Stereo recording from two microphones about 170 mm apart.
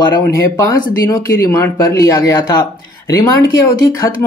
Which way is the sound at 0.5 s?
20° left (ahead or behind).